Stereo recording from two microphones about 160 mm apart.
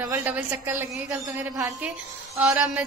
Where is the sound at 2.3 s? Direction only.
10° right (ahead or behind).